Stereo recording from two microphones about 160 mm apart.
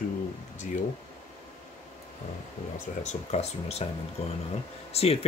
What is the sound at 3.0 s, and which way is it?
Speech, 45° left (ahead or behind).